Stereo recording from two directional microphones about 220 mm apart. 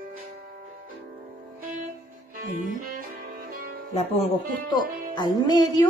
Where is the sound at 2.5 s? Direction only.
40° right (ahead or behind).